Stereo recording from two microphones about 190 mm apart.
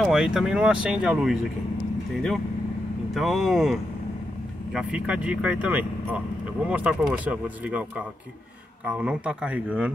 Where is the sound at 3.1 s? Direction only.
Centre (ahead or behind).